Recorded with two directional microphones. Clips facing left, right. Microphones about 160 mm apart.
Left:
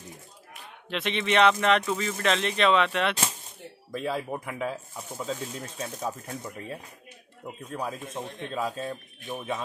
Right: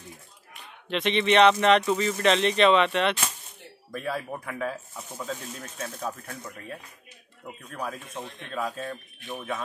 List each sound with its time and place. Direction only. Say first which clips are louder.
0.8 s speech: right 4 dB; 5° left (ahead or behind)
3.9 s speech: left 1 dB; 20° left (ahead or behind)